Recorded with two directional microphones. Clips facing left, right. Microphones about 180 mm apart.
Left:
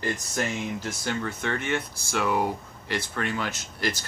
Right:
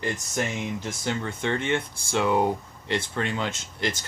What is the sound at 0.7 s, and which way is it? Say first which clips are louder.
Speech: right 1 dB; 20° right (ahead or behind).